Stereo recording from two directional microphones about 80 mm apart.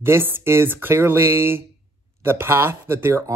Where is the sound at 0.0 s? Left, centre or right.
Right.